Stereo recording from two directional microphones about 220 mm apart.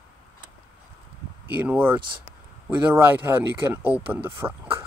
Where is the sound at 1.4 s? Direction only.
10° right (ahead or behind).